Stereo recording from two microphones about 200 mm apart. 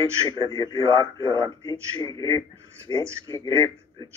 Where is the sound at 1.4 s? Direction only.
15° left (ahead or behind).